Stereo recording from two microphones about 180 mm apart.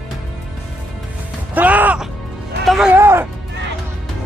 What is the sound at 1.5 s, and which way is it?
Music, 10° right (ahead or behind).